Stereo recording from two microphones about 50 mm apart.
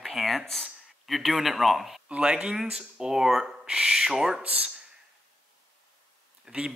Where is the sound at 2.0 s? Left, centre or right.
Right.